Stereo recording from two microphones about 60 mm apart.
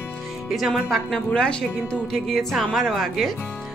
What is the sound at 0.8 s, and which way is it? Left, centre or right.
A woman's voice, centre.